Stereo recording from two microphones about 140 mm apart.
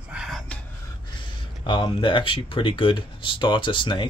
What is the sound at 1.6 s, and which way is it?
Speech, 35° left (ahead or behind).